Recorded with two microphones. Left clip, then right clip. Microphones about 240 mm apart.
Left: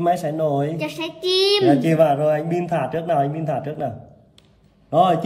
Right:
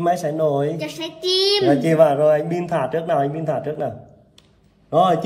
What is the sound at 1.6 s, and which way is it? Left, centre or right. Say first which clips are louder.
A man's voice: right 1 dB; centre.